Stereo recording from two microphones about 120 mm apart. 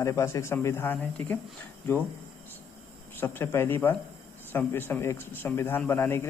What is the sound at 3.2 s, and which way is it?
Speech, 20° left (ahead or behind).